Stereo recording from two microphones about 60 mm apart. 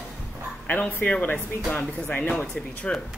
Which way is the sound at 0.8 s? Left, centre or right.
Left.